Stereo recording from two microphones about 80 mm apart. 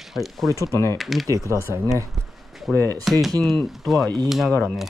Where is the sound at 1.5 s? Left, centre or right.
Right.